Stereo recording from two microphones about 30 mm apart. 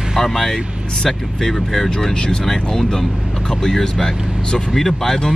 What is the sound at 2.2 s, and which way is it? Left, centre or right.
Speech, left.